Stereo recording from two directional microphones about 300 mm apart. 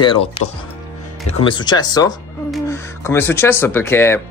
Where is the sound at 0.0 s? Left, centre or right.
Centre.